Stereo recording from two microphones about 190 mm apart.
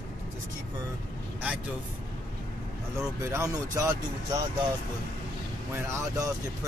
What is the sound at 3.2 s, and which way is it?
Speech, 15° right (ahead or behind).